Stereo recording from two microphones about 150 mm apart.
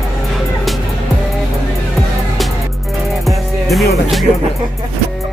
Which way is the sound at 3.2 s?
Centre (ahead or behind).